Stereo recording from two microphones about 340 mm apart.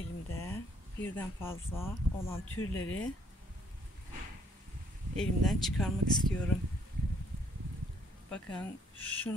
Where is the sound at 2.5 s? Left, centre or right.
Left.